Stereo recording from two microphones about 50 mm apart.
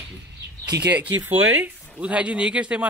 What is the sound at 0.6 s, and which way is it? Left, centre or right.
A man's voice, right.